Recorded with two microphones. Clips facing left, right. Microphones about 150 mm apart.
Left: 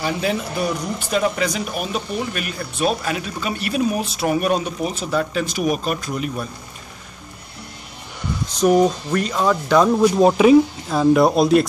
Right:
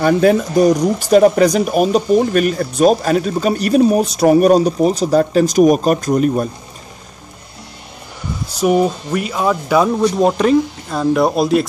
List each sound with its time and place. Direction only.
0.0 s speech: 50° right (ahead or behind)
8.5 s speech: 5° right (ahead or behind)
10.0 s speech: 5° left (ahead or behind)